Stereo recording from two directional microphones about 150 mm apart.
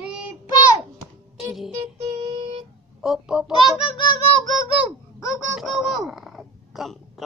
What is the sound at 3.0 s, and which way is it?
Speech, 5° right (ahead or behind).